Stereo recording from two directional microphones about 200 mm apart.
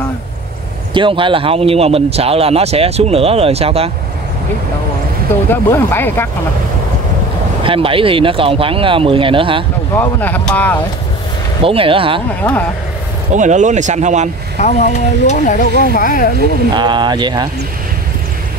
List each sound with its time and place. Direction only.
0.9 s speech: 25° right (ahead or behind)
5.5 s speech: 10° left (ahead or behind)
7.6 s speech: 25° right (ahead or behind)
9.9 s speech: 10° left (ahead or behind)
11.6 s speech: 25° right (ahead or behind)
12.4 s speech: 10° left (ahead or behind)
13.3 s speech: 40° right (ahead or behind)
14.6 s speech: 35° left (ahead or behind)
16.7 s speech: 20° right (ahead or behind)